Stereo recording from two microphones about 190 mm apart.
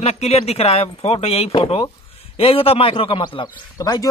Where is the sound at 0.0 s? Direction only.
35° left (ahead or behind).